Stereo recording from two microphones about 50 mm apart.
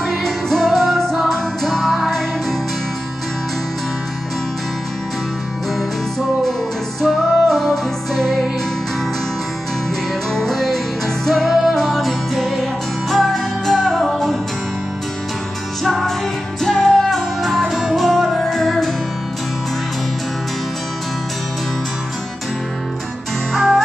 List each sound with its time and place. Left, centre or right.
0.0 s music: centre
7.0 s music: centre
10.3 s music: centre
15.8 s music: centre
23.5 s music: centre